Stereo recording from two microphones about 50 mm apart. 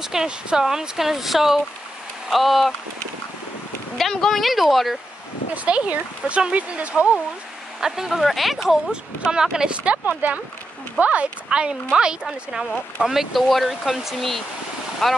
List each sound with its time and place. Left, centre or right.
0.0 s speech: centre
4.0 s speech: centre
5.5 s speech: right
7.8 s speech: centre
8.9 s speech: centre